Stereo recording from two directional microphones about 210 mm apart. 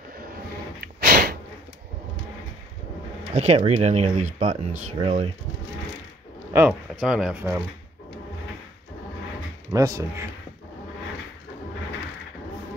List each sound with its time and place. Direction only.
0.7 s a sound: 45° right (ahead or behind)
3.3 s speech: 30° right (ahead or behind)
6.5 s speech: 5° right (ahead or behind)
9.7 s speech: 15° right (ahead or behind)